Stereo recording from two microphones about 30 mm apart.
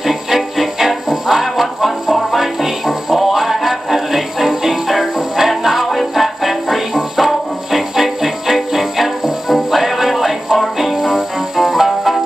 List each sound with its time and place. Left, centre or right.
0.0 s music: centre